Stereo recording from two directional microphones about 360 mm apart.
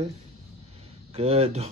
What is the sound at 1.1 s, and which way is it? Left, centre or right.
Speech, centre.